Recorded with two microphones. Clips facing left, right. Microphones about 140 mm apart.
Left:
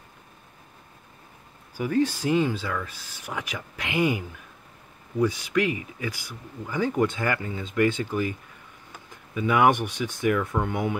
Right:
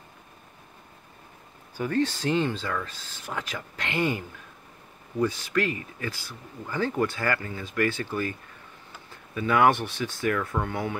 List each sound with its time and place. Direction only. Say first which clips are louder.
1.8 s speech: left 2 dB; 10° left (ahead or behind)